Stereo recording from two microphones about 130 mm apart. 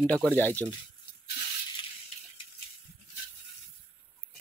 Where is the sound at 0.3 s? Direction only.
15° left (ahead or behind).